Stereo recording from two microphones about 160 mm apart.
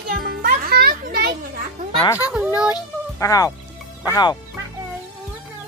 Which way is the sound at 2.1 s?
10° right (ahead or behind).